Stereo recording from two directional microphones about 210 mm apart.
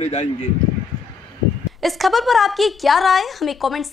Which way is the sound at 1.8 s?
Centre (ahead or behind).